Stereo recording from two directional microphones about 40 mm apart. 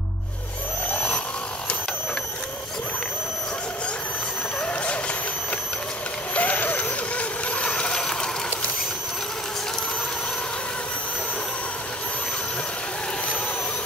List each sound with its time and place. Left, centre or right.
0.9 s vehicle: left
6.3 s vehicle: left
8.0 s a sound: centre